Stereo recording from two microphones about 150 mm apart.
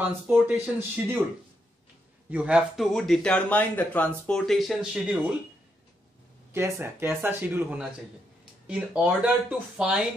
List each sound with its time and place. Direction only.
0.0 s speech: 15° right (ahead or behind)
2.2 s speech: 10° right (ahead or behind)
6.5 s speech: 15° right (ahead or behind)